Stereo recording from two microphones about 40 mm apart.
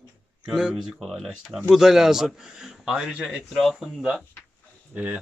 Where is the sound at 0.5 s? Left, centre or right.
Centre.